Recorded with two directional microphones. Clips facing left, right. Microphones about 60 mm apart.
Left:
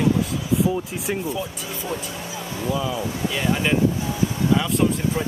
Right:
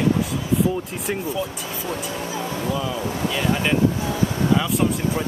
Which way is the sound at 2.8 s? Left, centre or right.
Centre.